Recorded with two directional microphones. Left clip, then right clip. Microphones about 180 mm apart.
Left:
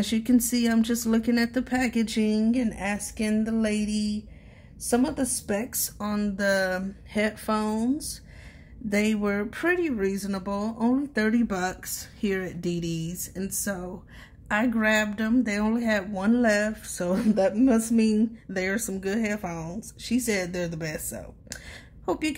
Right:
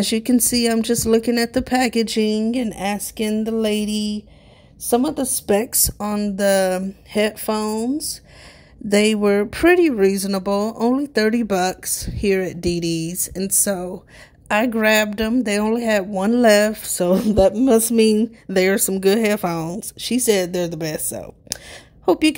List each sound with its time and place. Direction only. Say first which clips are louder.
0.0 s a woman's voice: right 6 dB; 45° right (ahead or behind)
7.6 s speech: right 6 dB; 30° right (ahead or behind)
8.8 s a woman's voice: right 10 dB; 45° right (ahead or behind)